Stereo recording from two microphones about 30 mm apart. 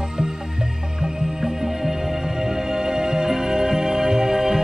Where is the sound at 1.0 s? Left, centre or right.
Centre.